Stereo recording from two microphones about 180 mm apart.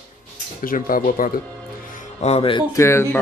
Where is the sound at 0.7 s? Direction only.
50° left (ahead or behind).